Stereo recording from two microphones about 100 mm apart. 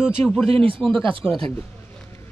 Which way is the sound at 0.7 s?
5° left (ahead or behind).